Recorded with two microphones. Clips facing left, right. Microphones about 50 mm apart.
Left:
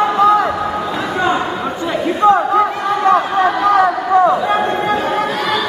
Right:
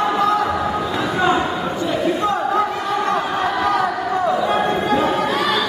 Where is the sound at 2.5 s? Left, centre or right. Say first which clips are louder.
Left 4 dB; centre.